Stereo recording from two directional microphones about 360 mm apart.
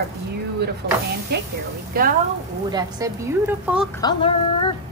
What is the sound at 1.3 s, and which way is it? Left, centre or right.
Speech, right.